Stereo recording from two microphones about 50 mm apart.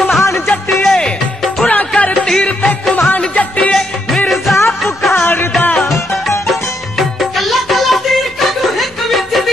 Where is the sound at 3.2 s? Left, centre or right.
Left.